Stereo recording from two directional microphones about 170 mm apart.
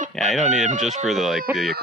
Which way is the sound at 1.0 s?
Centre (ahead or behind).